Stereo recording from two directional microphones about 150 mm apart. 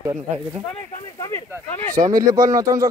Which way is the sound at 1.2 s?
25° left (ahead or behind).